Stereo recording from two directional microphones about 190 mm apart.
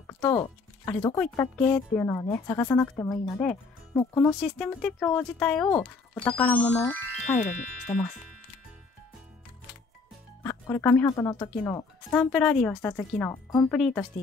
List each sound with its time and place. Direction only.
0.0 s speech: 15° left (ahead or behind)
4.4 s speech: 5° left (ahead or behind)
7.2 s speech: 40° left (ahead or behind)
10.4 s speech: 10° left (ahead or behind)
12.1 s speech: 5° left (ahead or behind)